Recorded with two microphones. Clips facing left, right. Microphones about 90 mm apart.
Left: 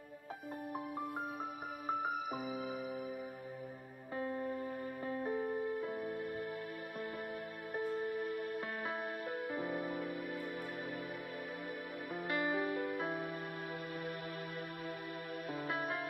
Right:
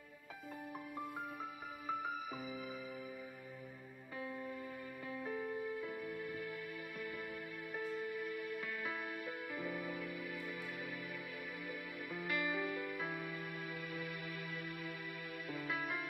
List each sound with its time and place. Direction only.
4.2 s music: 45° left (ahead or behind)
7.7 s music: 40° left (ahead or behind)
12.1 s music: 40° left (ahead or behind)
15.5 s music: 50° left (ahead or behind)